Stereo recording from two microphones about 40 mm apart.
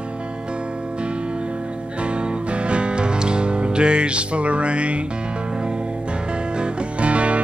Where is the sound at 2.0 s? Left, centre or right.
Right.